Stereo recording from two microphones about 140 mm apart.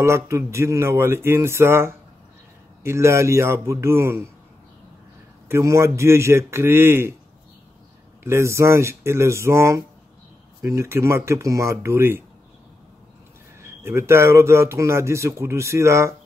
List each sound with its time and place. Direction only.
0.0 s a man's voice: 20° right (ahead or behind)
5.5 s a man's voice: 20° right (ahead or behind)
8.2 s a man's voice: 20° right (ahead or behind)
13.6 s a man's voice: 15° right (ahead or behind)